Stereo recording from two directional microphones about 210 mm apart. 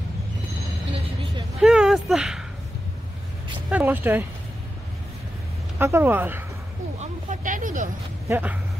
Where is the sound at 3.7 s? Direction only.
10° right (ahead or behind).